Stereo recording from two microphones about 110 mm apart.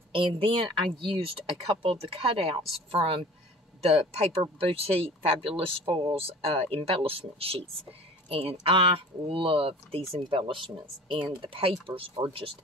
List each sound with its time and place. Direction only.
0.1 s speech: 55° right (ahead or behind)